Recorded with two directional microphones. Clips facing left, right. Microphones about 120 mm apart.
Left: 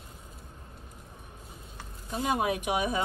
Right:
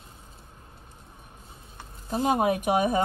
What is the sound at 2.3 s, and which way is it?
Speech, 45° right (ahead or behind).